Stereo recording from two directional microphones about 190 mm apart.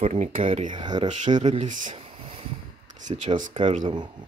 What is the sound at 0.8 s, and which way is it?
Speech, 25° right (ahead or behind).